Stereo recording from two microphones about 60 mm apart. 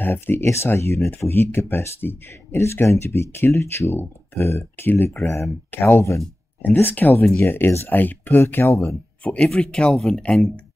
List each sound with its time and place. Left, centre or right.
0.0 s speech: left
5.7 s speech: left
9.2 s speech: left